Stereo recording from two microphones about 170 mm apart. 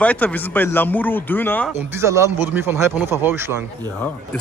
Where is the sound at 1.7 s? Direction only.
15° right (ahead or behind).